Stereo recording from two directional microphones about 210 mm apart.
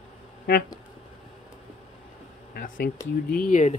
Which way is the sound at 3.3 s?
40° left (ahead or behind).